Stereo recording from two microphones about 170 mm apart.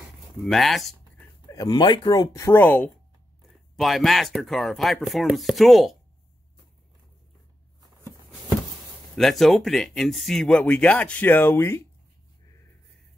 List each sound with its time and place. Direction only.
0.4 s speech: centre (ahead or behind)
1.5 s speech: 25° left (ahead or behind); by 5.9 s centre (ahead or behind)
9.1 s speech: centre (ahead or behind)